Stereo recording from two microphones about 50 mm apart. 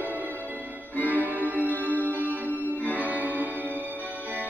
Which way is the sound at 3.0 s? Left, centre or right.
Right.